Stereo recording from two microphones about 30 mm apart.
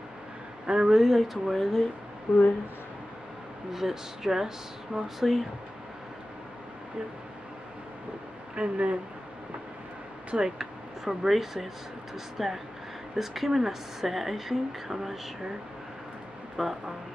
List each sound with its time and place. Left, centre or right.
0.7 s speech: centre
1.1 s speech: centre
2.3 s speech: right
3.7 s speech: centre
5.2 s speech: centre
8.5 s speech: right
10.3 s a sound: centre
11.2 s speech: centre
16.6 s speech: centre